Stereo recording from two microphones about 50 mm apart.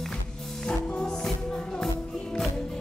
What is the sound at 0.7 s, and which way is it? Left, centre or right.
Music, centre.